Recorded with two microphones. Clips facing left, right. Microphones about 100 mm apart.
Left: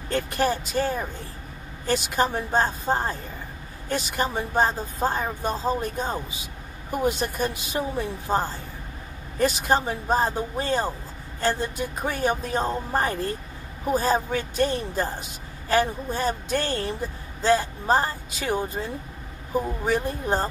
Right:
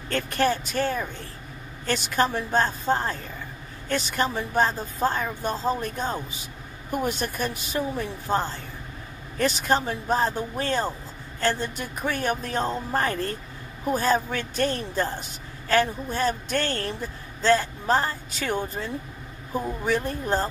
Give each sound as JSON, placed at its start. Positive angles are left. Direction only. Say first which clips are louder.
{"t": 0.1, "sound": "a woman's voice", "louder": "even", "side_deg": 10}